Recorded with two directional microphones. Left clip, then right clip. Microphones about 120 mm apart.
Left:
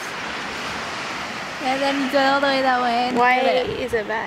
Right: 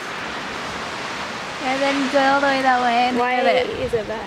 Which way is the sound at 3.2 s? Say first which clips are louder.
Left 1 dB; 35° left (ahead or behind).